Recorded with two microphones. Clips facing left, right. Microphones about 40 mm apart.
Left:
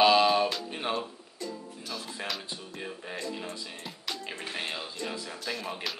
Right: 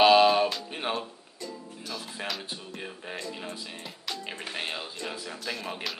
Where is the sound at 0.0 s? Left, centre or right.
Centre.